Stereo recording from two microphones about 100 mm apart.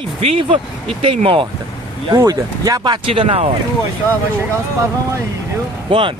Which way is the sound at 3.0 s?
70° right (ahead or behind).